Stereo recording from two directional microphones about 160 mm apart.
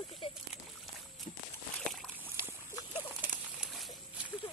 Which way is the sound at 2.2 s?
15° right (ahead or behind).